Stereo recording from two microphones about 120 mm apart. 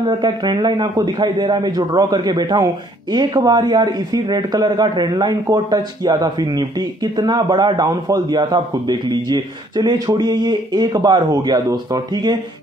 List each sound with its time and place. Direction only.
0.0 s a man's voice: 35° right (ahead or behind)